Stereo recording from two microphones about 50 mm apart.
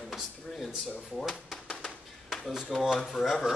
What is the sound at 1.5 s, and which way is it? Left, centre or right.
Bird, left.